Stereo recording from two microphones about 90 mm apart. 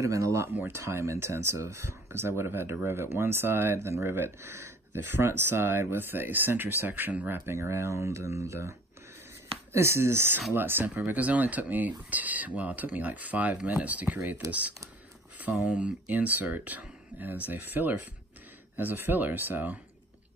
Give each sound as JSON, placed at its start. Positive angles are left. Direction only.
{"t": 0.0, "sound": "speech", "side_deg": -35}